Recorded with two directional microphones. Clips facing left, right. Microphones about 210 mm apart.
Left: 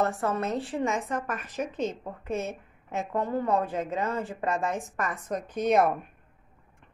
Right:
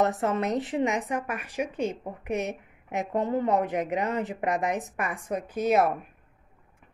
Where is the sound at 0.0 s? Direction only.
20° right (ahead or behind).